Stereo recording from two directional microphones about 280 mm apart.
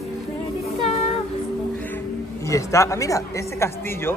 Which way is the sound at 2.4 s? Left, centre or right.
Centre.